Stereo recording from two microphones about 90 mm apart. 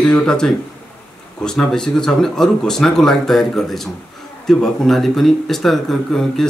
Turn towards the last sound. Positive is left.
turn(degrees=5)  # may be behind; listen again after turning